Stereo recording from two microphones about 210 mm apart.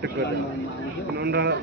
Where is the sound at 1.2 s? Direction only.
50° right (ahead or behind).